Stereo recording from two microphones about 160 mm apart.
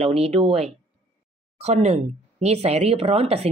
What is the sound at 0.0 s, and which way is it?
A woman's voice, 35° right (ahead or behind).